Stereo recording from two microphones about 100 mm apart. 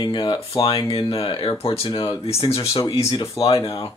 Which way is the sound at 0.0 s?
55° left (ahead or behind).